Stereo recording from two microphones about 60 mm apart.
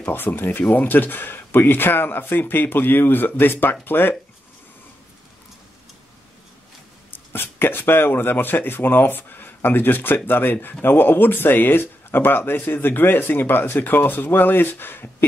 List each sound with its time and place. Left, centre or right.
0.1 s speech: left
7.1 s speech: left